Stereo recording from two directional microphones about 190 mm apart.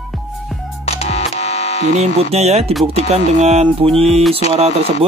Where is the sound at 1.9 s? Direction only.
35° right (ahead or behind).